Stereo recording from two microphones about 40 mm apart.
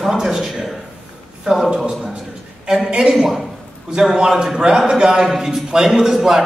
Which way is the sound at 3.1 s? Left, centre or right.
Centre.